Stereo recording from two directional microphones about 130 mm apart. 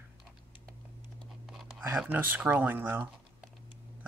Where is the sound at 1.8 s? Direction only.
15° right (ahead or behind).